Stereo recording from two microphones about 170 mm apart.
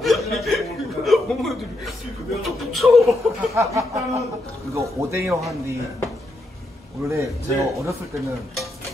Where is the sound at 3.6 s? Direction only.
20° right (ahead or behind).